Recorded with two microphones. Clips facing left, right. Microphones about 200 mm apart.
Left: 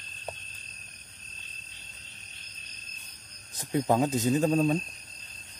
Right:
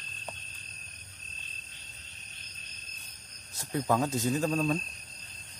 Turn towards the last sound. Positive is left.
turn(degrees=25)  # may be behind; listen again after turning